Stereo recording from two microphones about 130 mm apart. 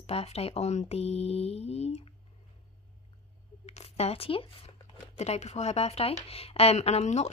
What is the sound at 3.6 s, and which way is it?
Speech, 55° left (ahead or behind).